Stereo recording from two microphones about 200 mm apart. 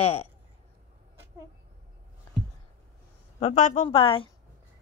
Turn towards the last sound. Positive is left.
turn(degrees=25)  # may be behind; listen again after turning